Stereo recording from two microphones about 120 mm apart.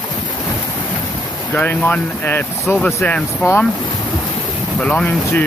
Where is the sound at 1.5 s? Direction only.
15° left (ahead or behind).